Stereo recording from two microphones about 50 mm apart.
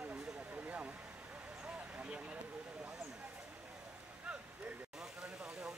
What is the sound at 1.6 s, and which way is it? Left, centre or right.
Vehicle, right.